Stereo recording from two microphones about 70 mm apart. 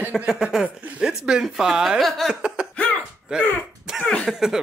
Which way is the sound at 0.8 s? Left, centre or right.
Right.